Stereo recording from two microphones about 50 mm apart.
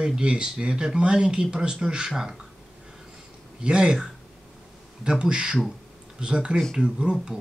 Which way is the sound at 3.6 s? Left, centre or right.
Centre.